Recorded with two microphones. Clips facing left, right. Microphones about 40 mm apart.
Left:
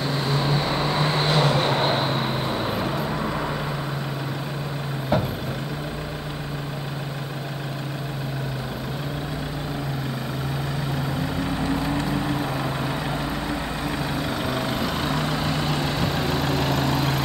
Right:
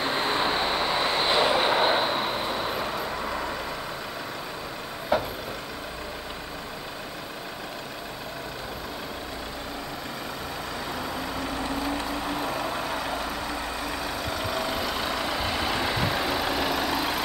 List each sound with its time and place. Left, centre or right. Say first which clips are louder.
0.0 s vehicle: even; right
0.7 s vehicle: left 2 dB; centre
5.1 s vehicle: left 1 dB; centre
11.0 s vehicle: left 4 dB; centre